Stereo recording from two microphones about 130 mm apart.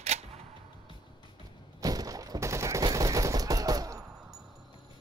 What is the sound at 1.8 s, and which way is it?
Gunshot, 30° right (ahead or behind).